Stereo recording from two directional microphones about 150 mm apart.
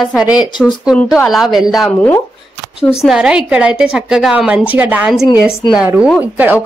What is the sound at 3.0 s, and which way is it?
A woman's voice, 5° right (ahead or behind).